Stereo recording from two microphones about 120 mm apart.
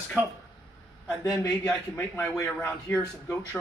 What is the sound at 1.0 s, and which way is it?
Speech, 25° left (ahead or behind).